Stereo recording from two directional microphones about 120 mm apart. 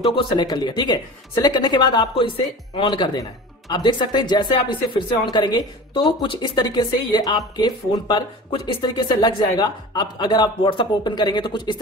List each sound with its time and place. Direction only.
0.1 s speech: 35° left (ahead or behind)